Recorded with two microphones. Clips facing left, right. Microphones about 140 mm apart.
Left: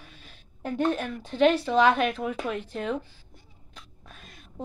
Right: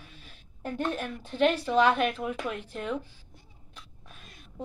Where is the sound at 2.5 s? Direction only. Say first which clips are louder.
Left 3 dB; 35° left (ahead or behind).